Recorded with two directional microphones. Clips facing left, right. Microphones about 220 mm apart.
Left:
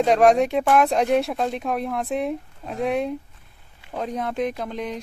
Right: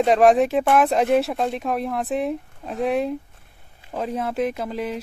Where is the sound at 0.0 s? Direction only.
Centre (ahead or behind).